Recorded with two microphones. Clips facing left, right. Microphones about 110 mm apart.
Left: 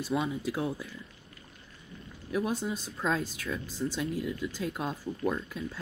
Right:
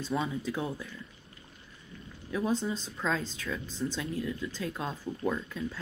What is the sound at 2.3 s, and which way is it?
Speech, 10° left (ahead or behind).